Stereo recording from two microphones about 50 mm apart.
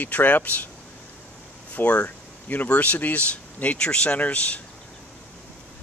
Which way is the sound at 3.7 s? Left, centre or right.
Centre.